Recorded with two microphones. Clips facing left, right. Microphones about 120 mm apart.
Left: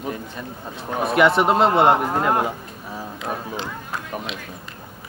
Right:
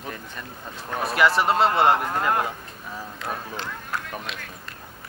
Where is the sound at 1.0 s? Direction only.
Centre (ahead or behind).